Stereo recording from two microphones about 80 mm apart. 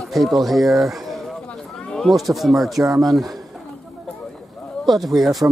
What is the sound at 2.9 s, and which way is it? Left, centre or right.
Speech, right.